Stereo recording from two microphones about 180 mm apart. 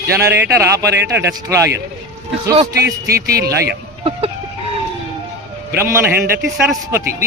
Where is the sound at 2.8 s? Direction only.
60° right (ahead or behind).